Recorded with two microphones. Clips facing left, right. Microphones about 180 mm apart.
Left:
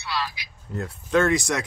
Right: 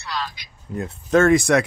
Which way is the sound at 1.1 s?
50° right (ahead or behind).